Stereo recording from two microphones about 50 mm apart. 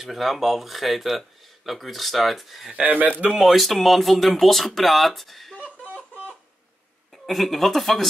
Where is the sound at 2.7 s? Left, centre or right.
Right.